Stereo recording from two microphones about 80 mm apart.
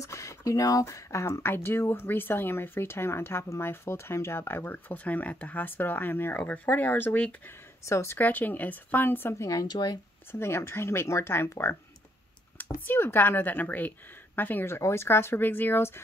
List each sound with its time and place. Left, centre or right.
0.0 s speech: left
7.8 s speech: left
8.2 s speech: left
9.7 s speech: left
10.4 s speech: left